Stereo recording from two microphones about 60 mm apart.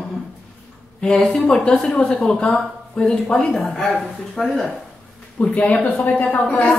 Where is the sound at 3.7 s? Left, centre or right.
Centre.